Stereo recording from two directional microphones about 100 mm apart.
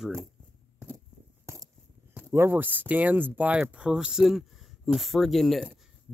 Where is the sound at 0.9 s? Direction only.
30° right (ahead or behind).